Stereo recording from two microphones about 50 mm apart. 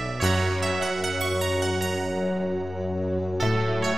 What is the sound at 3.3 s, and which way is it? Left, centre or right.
Music, centre.